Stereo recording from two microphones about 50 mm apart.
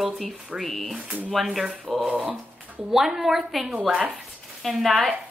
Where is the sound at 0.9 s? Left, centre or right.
Right.